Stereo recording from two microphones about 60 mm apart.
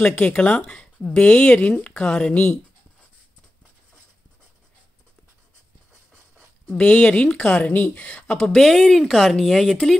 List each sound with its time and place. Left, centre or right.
0.2 s speech: centre
6.7 s speech: centre
8.5 s speech: centre